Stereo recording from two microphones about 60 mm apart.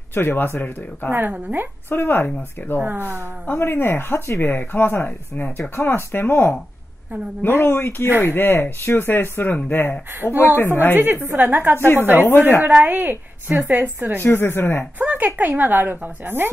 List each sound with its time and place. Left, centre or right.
0.1 s speech: left
1.1 s a woman's voice: right
1.9 s speech: left
2.8 s a woman's voice: right
3.4 s speech: left
11.0 s a woman's voice: right
11.8 s speech: left
12.6 s a woman's voice: right
14.2 s speech: left
15.0 s a woman's voice: right